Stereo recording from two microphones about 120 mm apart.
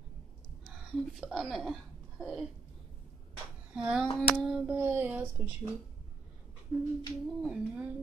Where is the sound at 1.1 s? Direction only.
Centre (ahead or behind).